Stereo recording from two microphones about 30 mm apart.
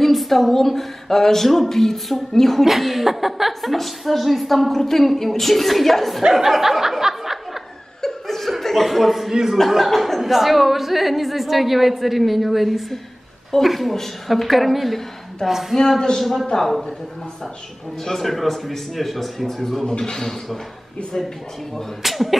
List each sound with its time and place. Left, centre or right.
0.0 s speech: centre
2.6 s a woman's voice: centre
6.3 s a sound: centre
8.0 s laughter: centre
8.5 s a man's voice: centre
9.3 s speech: centre
9.7 s a woman's voice: centre
10.3 s a woman's voice: centre
16.2 s a woman's voice: centre
18.0 s a woman's voice: centre
19.8 s a man's voice: left
22.0 s a woman's voice: centre